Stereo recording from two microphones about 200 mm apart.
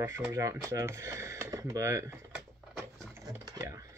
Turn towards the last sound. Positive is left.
turn(degrees=-20)  # may be behind; listen again after turning